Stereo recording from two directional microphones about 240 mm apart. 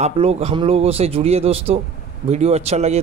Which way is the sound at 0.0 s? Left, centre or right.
Right.